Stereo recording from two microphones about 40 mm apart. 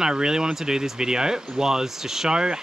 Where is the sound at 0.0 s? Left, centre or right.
Centre.